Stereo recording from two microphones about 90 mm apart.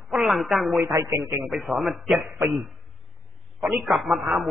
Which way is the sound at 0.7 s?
35° right (ahead or behind).